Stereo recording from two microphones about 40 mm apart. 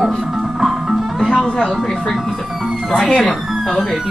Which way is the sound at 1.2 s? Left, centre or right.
Centre.